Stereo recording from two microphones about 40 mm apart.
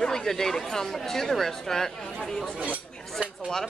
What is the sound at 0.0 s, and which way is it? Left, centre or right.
Speech, centre.